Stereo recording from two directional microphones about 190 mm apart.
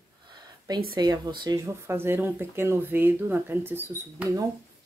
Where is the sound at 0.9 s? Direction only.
20° right (ahead or behind).